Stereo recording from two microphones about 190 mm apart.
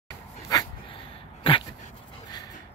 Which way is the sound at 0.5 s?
20° left (ahead or behind).